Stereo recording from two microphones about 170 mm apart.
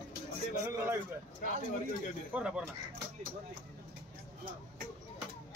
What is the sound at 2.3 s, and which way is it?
Speech, 5° right (ahead or behind).